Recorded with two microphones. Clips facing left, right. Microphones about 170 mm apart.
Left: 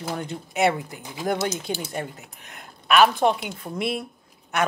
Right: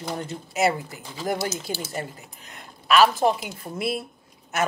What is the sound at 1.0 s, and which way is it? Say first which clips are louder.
Speech: left 2 dB; 15° left (ahead or behind).